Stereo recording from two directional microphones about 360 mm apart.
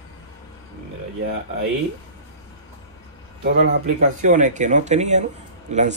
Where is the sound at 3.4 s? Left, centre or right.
Right.